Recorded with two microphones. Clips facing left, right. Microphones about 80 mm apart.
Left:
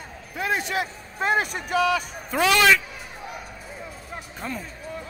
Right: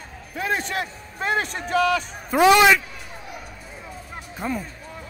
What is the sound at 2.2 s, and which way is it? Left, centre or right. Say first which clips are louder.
Speech: right 4 dB; centre.